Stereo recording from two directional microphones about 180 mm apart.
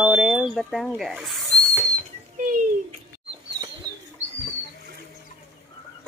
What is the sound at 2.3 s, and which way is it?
Bathtub, 45° right (ahead or behind).